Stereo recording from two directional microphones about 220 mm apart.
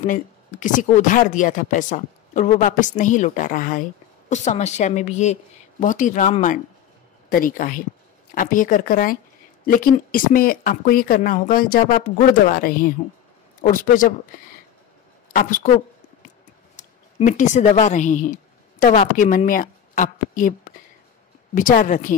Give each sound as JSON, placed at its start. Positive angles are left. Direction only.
{"t": 0.0, "sound": "speech", "side_deg": 35}
{"t": 15.3, "sound": "speech", "side_deg": 35}
{"t": 17.2, "sound": "speech", "side_deg": 35}
{"t": 21.5, "sound": "speech", "side_deg": 35}